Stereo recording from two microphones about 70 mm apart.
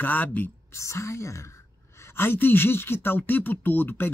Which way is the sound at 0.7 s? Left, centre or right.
Left.